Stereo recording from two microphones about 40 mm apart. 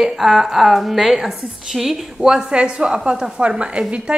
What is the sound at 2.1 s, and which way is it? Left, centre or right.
Speech, right.